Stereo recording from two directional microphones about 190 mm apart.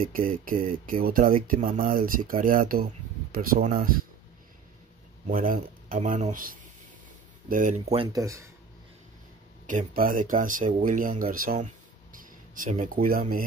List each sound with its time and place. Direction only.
0.0 s speech: 45° right (ahead or behind)
5.3 s speech: 45° right (ahead or behind)
8.1 s speech: 15° right (ahead or behind)
9.7 s speech: 45° right (ahead or behind)